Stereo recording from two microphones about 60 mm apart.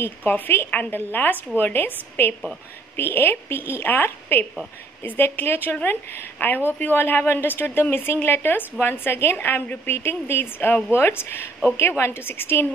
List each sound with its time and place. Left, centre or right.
0.2 s a woman's voice: left